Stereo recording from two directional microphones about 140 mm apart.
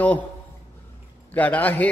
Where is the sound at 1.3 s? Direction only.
10° left (ahead or behind).